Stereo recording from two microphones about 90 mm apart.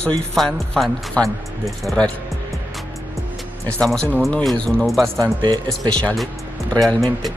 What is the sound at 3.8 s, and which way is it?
Speech, 5° left (ahead or behind).